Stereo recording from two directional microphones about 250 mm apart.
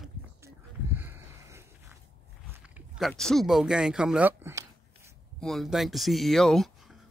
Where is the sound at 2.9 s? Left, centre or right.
Centre.